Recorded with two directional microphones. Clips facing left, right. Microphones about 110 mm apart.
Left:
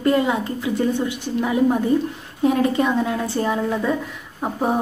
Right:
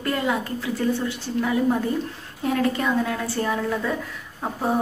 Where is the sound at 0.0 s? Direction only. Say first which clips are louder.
Left 6 dB; 20° left (ahead or behind).